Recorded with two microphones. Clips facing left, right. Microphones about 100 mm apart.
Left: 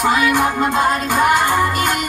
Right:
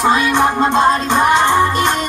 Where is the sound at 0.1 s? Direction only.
25° right (ahead or behind).